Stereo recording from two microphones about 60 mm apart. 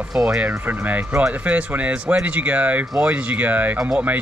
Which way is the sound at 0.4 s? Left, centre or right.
Right.